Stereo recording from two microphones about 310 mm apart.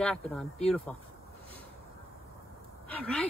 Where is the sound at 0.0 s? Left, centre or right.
Centre.